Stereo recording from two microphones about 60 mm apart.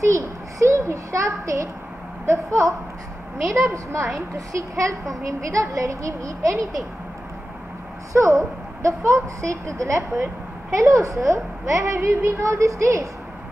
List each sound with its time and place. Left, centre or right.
0.0 s a sound: right
2.2 s a woman's voice: right
3.7 s a woman's voice: right
8.1 s a woman's voice: right